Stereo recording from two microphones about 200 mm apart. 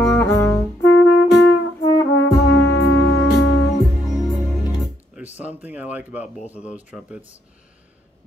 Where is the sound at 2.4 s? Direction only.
60° left (ahead or behind).